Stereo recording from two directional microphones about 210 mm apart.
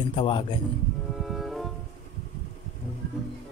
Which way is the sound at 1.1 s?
Centre (ahead or behind).